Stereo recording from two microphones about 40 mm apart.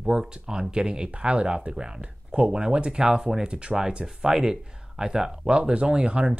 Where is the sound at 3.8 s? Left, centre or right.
Centre.